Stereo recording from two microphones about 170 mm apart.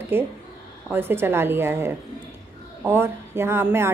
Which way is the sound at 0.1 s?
15° right (ahead or behind).